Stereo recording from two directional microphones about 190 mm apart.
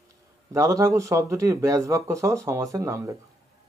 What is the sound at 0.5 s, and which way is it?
Speech, 15° right (ahead or behind).